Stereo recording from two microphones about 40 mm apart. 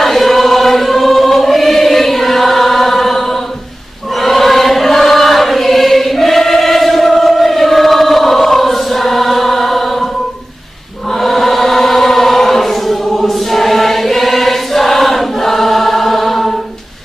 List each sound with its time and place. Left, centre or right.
0.0 s choir: centre
4.2 s chant: centre
11.1 s chant: centre